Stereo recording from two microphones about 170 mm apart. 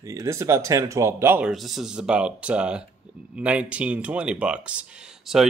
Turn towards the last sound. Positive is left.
turn(degrees=-5)  # may be behind; listen again after turning